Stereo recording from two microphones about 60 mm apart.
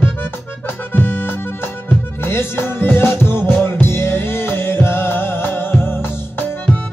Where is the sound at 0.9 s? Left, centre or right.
Left.